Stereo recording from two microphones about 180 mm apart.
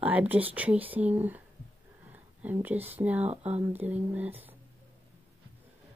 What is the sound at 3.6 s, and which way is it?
Speech, 10° right (ahead or behind).